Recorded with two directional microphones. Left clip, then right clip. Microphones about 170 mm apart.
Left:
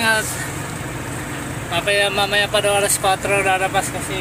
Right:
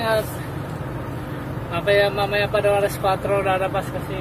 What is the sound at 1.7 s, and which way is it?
Speech, centre (ahead or behind).